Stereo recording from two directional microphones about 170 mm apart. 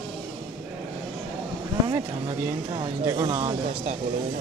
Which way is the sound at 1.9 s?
25° right (ahead or behind).